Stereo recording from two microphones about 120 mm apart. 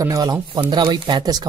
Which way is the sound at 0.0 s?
30° right (ahead or behind).